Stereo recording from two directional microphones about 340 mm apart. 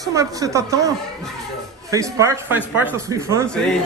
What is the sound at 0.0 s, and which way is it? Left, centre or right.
A man's voice, centre.